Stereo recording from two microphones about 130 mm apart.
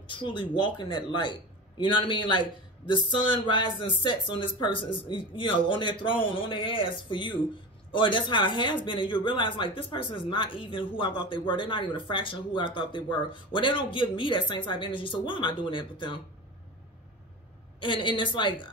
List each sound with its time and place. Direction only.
0.0 s speech: 40° left (ahead or behind)
17.7 s speech: 40° left (ahead or behind)